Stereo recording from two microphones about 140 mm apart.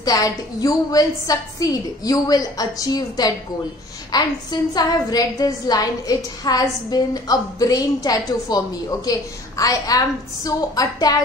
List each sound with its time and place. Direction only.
0.0 s a woman's voice: 25° left (ahead or behind)